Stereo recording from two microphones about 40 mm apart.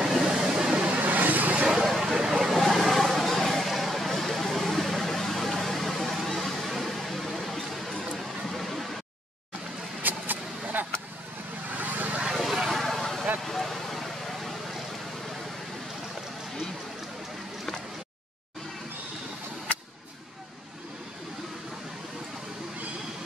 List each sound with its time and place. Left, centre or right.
0.0 s vehicle: centre
0.8 s vehicle: right
1.9 s a sound: centre
2.1 s a sound: centre
5.0 s vehicle: centre
8.2 s a sound: centre
10.0 s vehicle: right
12.3 s vehicle: centre
12.7 s vehicle: centre